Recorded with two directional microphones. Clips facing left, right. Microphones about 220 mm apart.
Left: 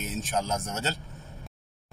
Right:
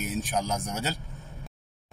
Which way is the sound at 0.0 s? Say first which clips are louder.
Right 1 dB; 15° right (ahead or behind).